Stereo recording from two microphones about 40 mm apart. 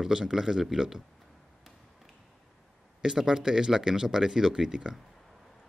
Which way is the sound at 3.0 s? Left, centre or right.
Centre.